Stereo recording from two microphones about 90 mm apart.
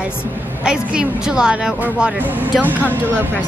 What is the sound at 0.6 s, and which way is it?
A woman's voice, 10° right (ahead or behind).